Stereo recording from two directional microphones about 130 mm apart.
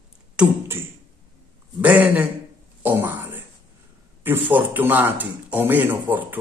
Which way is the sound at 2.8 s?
15° right (ahead or behind).